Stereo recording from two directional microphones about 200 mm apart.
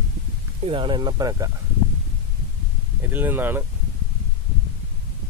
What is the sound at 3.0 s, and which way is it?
Speech, 10° right (ahead or behind).